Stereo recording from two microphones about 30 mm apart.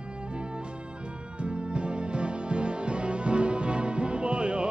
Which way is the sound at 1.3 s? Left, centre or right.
Right.